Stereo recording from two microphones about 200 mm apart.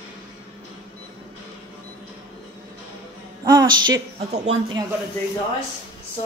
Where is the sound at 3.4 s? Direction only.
20° right (ahead or behind).